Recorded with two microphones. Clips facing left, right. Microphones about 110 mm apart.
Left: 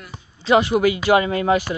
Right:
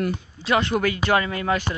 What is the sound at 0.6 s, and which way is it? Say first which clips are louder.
Speech: left 5 dB; 10° left (ahead or behind).